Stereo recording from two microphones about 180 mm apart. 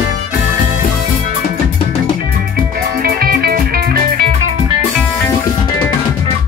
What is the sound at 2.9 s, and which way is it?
Music, 55° right (ahead or behind).